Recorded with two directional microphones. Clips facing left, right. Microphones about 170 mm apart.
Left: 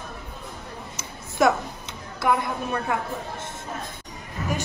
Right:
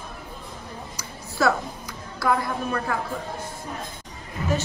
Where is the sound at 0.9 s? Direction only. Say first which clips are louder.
Left 3 dB; 25° left (ahead or behind).